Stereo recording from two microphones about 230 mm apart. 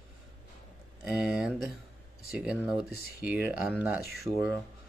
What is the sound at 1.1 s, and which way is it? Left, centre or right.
Speech, centre.